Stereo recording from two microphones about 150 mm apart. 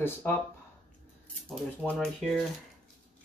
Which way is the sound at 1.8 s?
Centre (ahead or behind).